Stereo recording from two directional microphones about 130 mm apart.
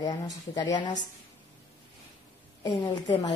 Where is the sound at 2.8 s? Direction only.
35° left (ahead or behind).